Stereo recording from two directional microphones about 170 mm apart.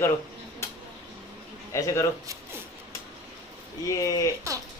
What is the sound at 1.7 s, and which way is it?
Speech, 15° left (ahead or behind).